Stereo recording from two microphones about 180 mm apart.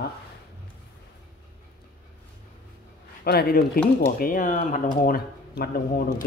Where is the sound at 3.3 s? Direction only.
60° left (ahead or behind).